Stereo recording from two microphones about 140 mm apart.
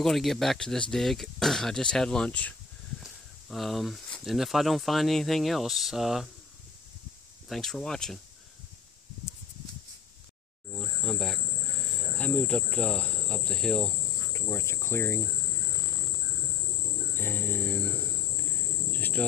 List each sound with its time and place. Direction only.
0.0 s speech: centre (ahead or behind)
7.4 s speech: centre (ahead or behind)
10.7 s cricket: centre (ahead or behind)
12.0 s insect: 5° left (ahead or behind)
14.3 s cricket: 20° left (ahead or behind)
17.1 s cricket: 15° left (ahead or behind)